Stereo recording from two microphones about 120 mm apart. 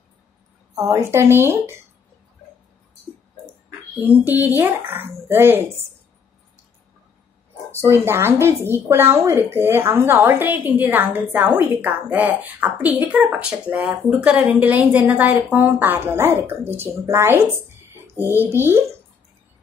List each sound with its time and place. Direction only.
0.7 s a woman's voice: 25° right (ahead or behind)
4.0 s a woman's voice: 15° right (ahead or behind)
7.7 s a woman's voice: 20° right (ahead or behind)